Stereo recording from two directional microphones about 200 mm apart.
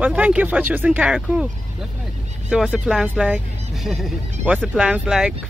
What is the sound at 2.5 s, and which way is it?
Speech, 5° right (ahead or behind).